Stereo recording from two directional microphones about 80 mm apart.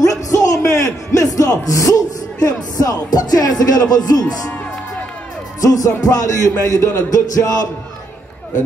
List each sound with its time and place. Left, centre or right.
0.0 s a sound: left
3.9 s speech: left
5.6 s speech: left